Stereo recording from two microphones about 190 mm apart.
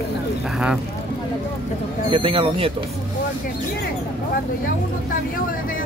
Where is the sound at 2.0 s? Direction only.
30° right (ahead or behind).